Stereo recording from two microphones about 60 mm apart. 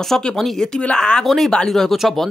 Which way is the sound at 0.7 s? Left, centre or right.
Centre.